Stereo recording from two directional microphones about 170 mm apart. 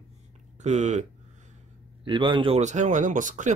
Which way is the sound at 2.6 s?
45° right (ahead or behind).